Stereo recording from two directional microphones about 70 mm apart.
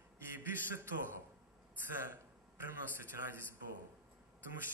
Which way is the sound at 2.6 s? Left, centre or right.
Right.